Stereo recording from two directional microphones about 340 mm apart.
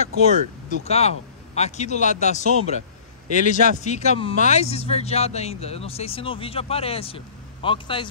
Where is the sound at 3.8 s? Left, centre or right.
Centre.